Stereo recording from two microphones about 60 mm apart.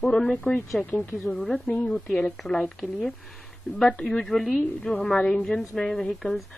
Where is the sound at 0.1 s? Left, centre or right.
Left.